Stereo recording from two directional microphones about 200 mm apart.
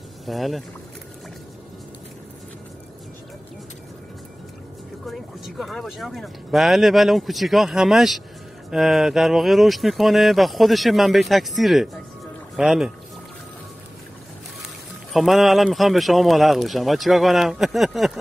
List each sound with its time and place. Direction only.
0.3 s speech: centre (ahead or behind)
5.0 s speech: centre (ahead or behind)
15.1 s speech: centre (ahead or behind)